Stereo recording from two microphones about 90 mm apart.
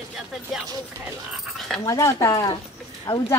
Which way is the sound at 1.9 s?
35° left (ahead or behind).